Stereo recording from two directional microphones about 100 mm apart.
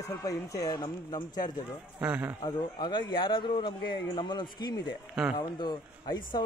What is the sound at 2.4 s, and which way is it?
Speech, 50° left (ahead or behind).